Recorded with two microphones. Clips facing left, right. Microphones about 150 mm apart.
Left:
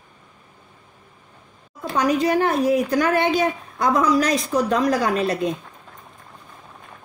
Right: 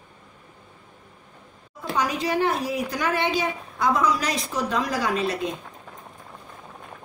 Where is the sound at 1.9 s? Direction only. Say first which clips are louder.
Left 5 dB; 50° left (ahead or behind).